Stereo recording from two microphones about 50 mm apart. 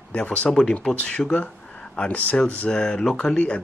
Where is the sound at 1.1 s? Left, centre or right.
Left.